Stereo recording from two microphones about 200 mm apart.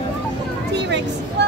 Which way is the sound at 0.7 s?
60° right (ahead or behind).